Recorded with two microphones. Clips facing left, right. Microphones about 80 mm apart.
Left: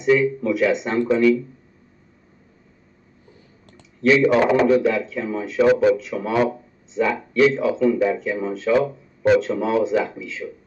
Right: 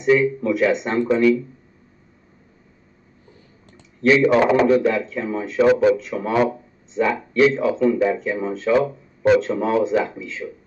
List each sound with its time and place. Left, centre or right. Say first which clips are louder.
0.0 s speech: right 1 dB; right
4.0 s speech: right 1 dB; right